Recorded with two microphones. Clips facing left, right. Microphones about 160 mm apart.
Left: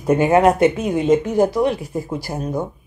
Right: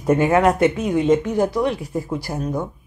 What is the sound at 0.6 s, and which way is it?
Speech, 5° left (ahead or behind).